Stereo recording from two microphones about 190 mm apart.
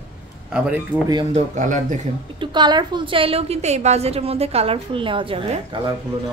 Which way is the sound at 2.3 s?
25° right (ahead or behind).